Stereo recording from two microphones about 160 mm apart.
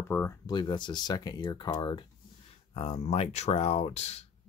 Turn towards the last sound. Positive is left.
turn(degrees=40)  # may be behind; listen again after turning